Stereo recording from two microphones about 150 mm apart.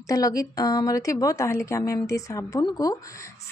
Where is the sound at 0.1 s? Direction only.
25° left (ahead or behind).